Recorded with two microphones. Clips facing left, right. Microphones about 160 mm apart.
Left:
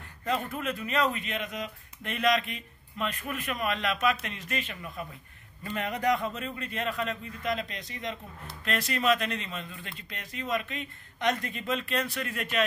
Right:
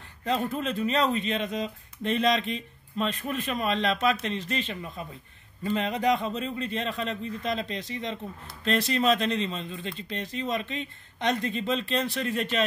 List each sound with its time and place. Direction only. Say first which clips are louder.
0.3 s speech: right 3 dB; 30° right (ahead or behind)